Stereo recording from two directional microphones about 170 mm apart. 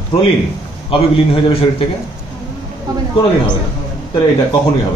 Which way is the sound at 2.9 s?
25° right (ahead or behind).